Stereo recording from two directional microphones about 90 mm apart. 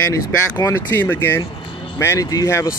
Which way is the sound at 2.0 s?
35° left (ahead or behind).